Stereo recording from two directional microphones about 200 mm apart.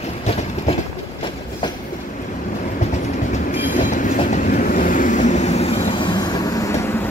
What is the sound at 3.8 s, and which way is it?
Train, 40° left (ahead or behind).